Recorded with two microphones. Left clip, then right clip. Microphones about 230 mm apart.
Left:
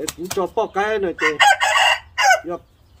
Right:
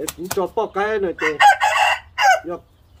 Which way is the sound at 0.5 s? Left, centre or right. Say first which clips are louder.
Left 2 dB; centre.